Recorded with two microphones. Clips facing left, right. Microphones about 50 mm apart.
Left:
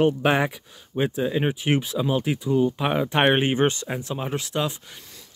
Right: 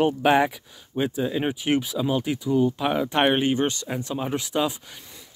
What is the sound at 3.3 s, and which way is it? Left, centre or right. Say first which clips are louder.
Speech: left 2 dB; left.